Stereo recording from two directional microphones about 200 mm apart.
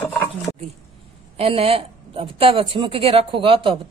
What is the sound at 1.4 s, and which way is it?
Speech, 30° right (ahead or behind).